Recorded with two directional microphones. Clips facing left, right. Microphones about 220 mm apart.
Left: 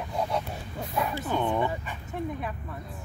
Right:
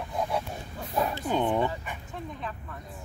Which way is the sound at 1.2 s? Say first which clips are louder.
Right 2 dB; 20° right (ahead or behind).